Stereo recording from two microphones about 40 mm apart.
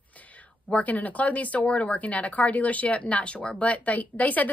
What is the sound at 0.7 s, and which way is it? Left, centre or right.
A woman's voice, left.